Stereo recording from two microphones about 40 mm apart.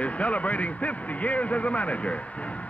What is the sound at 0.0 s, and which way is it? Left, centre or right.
A man's voice, left.